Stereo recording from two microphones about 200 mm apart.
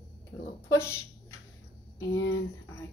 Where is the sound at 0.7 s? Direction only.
15° left (ahead or behind).